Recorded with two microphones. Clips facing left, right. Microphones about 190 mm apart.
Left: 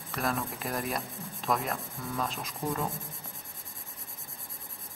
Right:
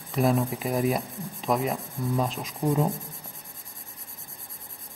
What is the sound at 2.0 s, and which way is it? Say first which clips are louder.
Rub: right 10 dB; 15° right (ahead or behind).